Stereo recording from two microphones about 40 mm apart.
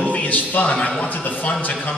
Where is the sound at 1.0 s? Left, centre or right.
Left.